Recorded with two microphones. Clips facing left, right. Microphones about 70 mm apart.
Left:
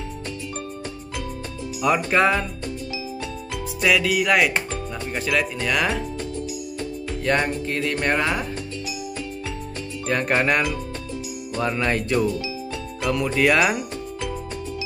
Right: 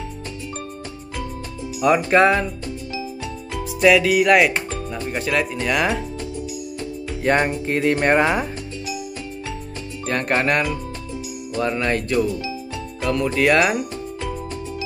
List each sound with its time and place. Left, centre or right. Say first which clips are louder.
1.8 s speech: right 4 dB; centre
3.8 s speech: right 5 dB; centre
7.2 s speech: right 3 dB; right
10.0 s speech: right 1 dB; centre